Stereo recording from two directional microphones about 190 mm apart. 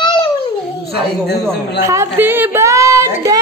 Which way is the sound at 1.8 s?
15° right (ahead or behind).